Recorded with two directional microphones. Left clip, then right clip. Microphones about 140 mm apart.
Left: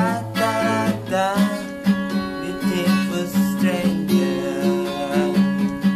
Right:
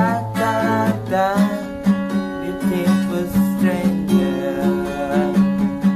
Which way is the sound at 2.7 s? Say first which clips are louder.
Right 1 dB; 45° right (ahead or behind).